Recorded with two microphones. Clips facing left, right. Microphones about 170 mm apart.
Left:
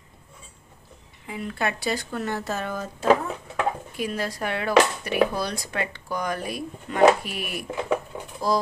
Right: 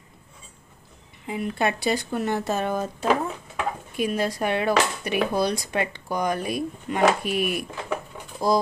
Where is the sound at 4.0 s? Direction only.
20° right (ahead or behind).